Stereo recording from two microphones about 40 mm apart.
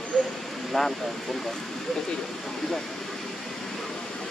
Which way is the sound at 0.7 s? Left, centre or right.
Centre.